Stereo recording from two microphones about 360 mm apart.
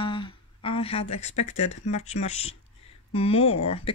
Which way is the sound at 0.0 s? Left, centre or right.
Centre.